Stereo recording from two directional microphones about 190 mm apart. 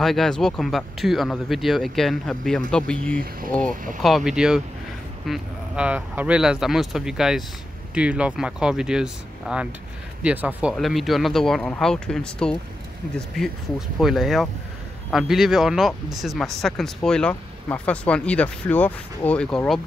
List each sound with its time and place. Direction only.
0.0 s speech: centre (ahead or behind)
3.2 s speech: 50° right (ahead or behind)
4.0 s speech: centre (ahead or behind)